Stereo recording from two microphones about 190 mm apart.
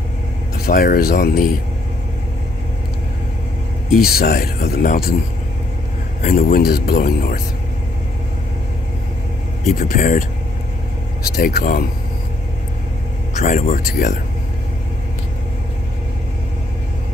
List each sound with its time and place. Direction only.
0.7 s speech: 50° left (ahead or behind)
3.9 s speech: 55° left (ahead or behind)
6.2 s speech: 50° left (ahead or behind)
9.8 s speech: 45° left (ahead or behind)
11.3 s speech: 50° left (ahead or behind)
13.4 s speech: 45° left (ahead or behind)